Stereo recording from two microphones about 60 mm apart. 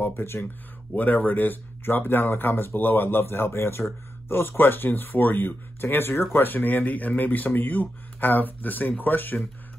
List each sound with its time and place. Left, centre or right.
0.0 s speech: left
0.9 s speech: left